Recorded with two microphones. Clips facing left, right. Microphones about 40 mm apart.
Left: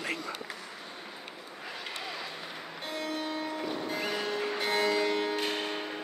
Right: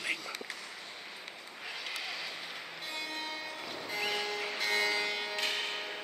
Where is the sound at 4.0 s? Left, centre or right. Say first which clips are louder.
Even; centre.